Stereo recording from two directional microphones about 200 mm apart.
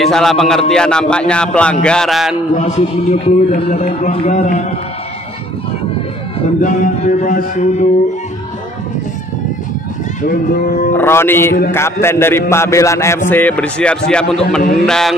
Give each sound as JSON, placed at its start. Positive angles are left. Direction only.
{"t": 0.0, "sound": "speech", "side_deg": 0}
{"t": 2.5, "sound": "a man's voice", "side_deg": 35}
{"t": 6.6, "sound": "a man's voice", "side_deg": 40}
{"t": 11.0, "sound": "a man's voice", "side_deg": 10}